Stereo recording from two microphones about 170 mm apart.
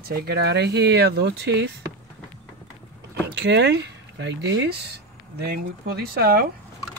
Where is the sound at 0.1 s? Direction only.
70° right (ahead or behind); by 1.7 s 90° right.